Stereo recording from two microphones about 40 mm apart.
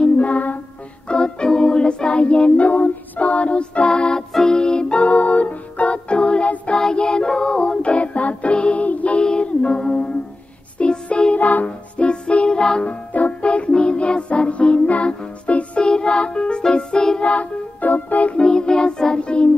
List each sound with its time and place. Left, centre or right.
0.0 s music: left
1.0 s music: left
4.3 s music: centre
4.6 s music: centre
5.0 s music: left
9.2 s music: left
11.3 s music: left
11.6 s music: left
13.1 s music: left
17.2 s music: left
17.7 s organ: left
18.3 s music: left